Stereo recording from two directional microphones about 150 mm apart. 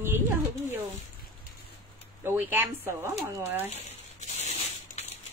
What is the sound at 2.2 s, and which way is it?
Speech, 15° right (ahead or behind).